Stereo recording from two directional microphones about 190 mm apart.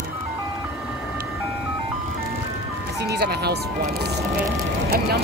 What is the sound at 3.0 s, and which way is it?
Speech, 55° right (ahead or behind).